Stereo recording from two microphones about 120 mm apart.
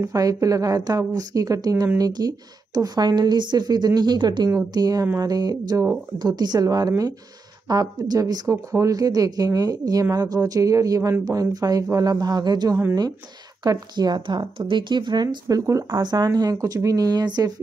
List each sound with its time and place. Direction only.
0.0 s a woman's voice: 30° right (ahead or behind)
15.4 s a woman's voice: 25° right (ahead or behind)